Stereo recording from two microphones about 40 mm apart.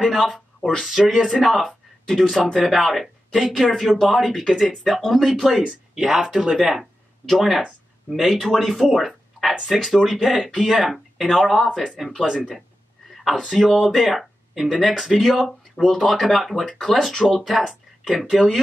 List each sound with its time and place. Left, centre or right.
0.0 s speech: centre
0.6 s speech: left
0.8 s speech: centre
6.5 s speech: centre
11.2 s speech: centre
13.1 s a sound: centre
13.5 s speech: centre
17.5 s speech: centre